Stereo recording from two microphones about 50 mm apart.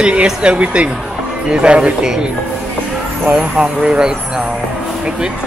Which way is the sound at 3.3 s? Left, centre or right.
Centre.